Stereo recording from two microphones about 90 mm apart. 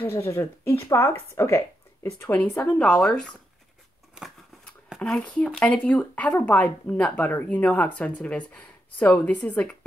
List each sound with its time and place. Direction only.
0.1 s speech: 30° left (ahead or behind)
2.2 s speech: 15° left (ahead or behind)
5.0 s speech: 5° left (ahead or behind)